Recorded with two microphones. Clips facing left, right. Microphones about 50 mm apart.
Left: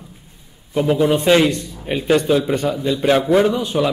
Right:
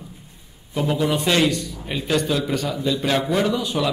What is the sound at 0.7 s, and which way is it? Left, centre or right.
Speech, centre.